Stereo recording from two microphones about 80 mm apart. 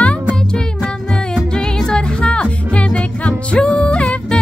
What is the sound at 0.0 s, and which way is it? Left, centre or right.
Music, centre.